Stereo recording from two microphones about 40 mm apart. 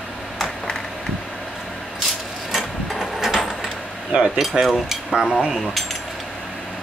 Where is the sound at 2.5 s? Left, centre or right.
Centre.